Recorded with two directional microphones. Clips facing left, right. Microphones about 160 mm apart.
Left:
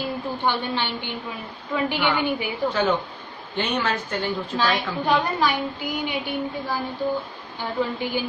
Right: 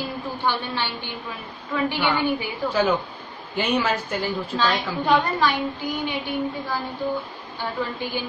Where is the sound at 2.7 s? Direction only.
10° right (ahead or behind).